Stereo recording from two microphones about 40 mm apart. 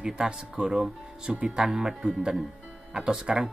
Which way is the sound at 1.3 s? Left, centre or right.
Right.